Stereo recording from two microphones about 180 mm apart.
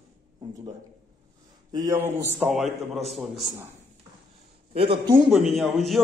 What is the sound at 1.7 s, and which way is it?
Speech, 20° right (ahead or behind).